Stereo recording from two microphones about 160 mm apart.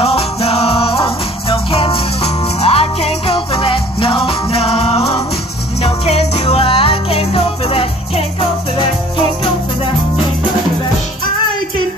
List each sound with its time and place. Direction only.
0.0 s music: 40° left (ahead or behind)